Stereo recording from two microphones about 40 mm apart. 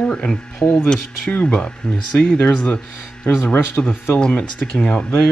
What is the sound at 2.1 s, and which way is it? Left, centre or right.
Speech, left.